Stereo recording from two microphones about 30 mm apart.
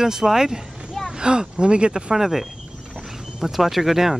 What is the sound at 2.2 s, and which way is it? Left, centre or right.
Speech, centre.